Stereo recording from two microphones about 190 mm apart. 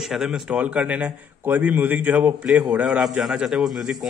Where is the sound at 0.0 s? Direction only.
Centre (ahead or behind).